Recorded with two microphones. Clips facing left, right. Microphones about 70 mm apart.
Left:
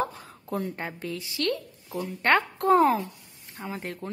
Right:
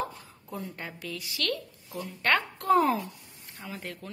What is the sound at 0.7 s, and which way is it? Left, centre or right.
Speech, left.